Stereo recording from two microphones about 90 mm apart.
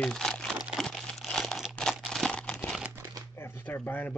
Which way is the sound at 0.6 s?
5° right (ahead or behind).